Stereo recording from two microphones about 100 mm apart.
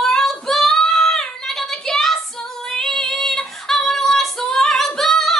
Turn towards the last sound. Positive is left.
turn(degrees=5)  # may be behind; listen again after turning